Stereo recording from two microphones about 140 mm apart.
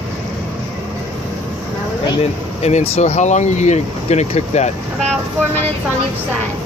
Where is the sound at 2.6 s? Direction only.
50° left (ahead or behind).